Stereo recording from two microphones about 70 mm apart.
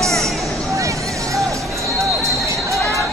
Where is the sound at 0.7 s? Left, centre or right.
Right.